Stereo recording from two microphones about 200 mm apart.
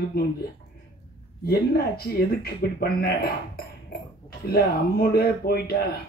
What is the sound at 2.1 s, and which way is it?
A man's voice, 50° left (ahead or behind).